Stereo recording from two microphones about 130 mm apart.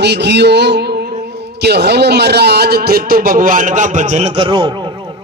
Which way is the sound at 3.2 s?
90° right.